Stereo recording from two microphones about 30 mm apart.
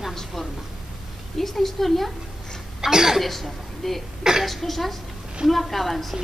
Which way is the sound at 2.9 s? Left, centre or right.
Centre.